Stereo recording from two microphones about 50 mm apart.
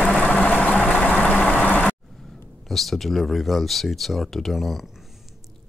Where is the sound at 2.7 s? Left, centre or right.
Centre.